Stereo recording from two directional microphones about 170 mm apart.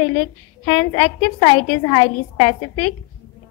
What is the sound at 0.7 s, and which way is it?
A woman's voice, 35° left (ahead or behind).